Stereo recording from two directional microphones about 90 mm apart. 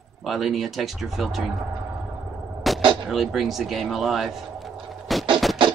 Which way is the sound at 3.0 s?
Centre (ahead or behind).